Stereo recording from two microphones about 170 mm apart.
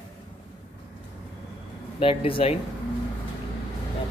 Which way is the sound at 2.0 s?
35° left (ahead or behind).